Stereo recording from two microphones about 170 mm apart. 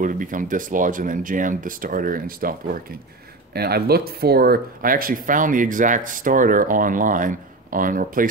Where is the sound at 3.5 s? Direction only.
65° right (ahead or behind).